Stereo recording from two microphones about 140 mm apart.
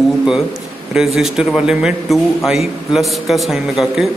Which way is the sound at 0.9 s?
5° right (ahead or behind).